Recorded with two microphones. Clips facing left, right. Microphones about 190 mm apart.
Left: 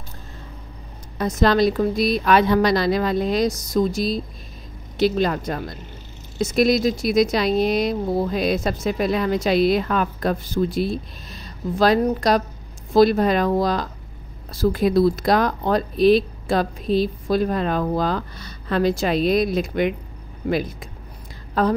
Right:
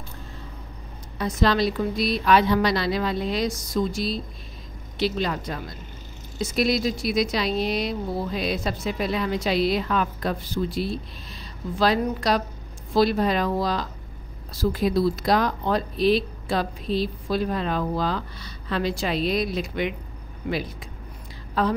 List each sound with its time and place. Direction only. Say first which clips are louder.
1.1 s speech: left 4 dB; 45° left (ahead or behind)